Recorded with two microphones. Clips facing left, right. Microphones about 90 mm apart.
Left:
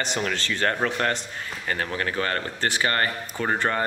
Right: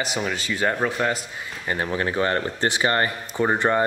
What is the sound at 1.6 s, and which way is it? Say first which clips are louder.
Speech: right 3 dB; 20° right (ahead or behind).